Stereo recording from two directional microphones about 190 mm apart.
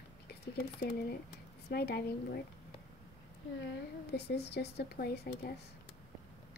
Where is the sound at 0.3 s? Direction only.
55° left (ahead or behind).